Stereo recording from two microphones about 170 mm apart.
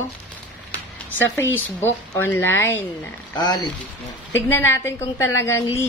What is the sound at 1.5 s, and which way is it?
A woman's voice, 15° left (ahead or behind).